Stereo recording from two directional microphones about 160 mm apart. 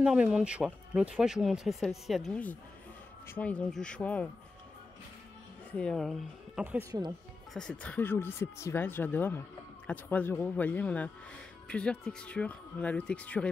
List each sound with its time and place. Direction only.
0.0 s speech: 5° right (ahead or behind)
5.7 s speech: 5° left (ahead or behind)
6.6 s speech: 10° right (ahead or behind)
6.9 s speech: 20° right (ahead or behind)
7.5 s speech: 5° left (ahead or behind)